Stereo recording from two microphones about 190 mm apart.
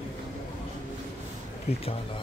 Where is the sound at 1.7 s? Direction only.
35° left (ahead or behind).